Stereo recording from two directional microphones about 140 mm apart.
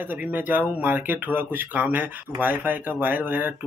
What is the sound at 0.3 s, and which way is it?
Speech, 15° right (ahead or behind).